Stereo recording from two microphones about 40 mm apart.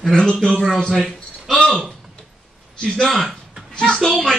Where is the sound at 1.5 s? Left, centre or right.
Left.